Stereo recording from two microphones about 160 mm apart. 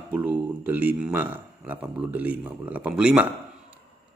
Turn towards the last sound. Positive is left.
turn(degrees=-10)  # may be behind; listen again after turning